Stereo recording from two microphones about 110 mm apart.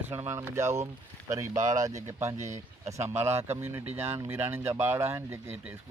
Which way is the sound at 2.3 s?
90° right.